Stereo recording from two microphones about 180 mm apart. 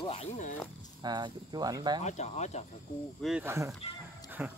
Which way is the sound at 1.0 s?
25° right (ahead or behind).